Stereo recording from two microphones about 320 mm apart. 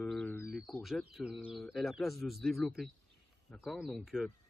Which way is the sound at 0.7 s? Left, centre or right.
Centre.